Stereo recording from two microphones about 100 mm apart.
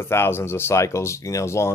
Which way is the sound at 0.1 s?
25° left (ahead or behind).